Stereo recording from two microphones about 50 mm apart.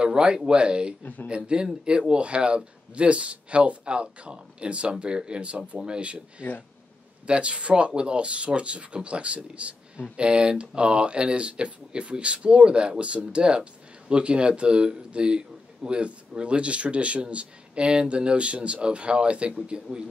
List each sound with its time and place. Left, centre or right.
0.0 s speech: centre
7.2 s speech: right